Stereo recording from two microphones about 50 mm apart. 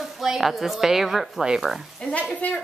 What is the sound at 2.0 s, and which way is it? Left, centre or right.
Speech, left.